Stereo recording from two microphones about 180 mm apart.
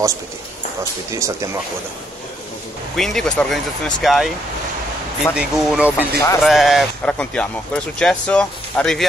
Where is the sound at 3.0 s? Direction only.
Centre (ahead or behind).